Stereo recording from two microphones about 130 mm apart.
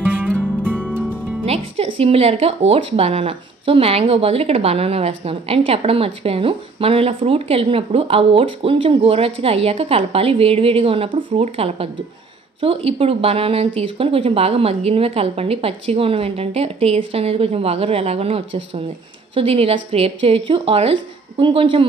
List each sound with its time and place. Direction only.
0.0 s music: 15° right (ahead or behind)
1.4 s speech: 50° right (ahead or behind)